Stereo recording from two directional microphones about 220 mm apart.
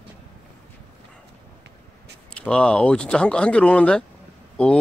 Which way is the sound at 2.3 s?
5° left (ahead or behind).